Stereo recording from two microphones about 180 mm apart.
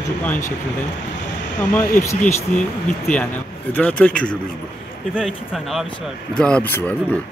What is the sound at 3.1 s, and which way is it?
Speech, 10° left (ahead or behind).